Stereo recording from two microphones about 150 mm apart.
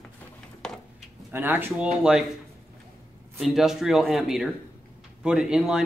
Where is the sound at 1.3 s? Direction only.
15° right (ahead or behind).